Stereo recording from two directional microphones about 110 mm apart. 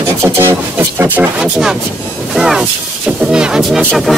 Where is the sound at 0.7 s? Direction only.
15° right (ahead or behind).